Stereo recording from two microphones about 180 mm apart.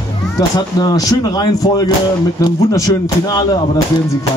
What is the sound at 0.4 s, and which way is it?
Speech, 20° left (ahead or behind).